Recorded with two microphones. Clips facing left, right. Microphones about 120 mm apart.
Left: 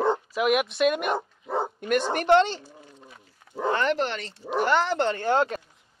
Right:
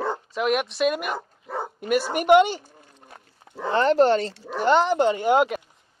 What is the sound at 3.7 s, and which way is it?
Speech, 35° right (ahead or behind).